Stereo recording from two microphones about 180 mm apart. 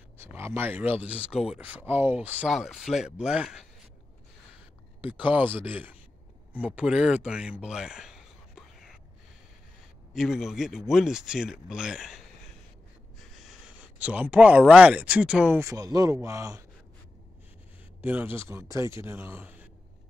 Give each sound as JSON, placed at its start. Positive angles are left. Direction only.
{"t": 0.2, "sound": "speech", "side_deg": -15}
{"t": 5.2, "sound": "speech", "side_deg": -10}
{"t": 10.1, "sound": "speech", "side_deg": 0}
{"t": 13.5, "sound": "speech", "side_deg": -10}
{"t": 15.6, "sound": "speech", "side_deg": -20}
{"t": 18.0, "sound": "speech", "side_deg": -10}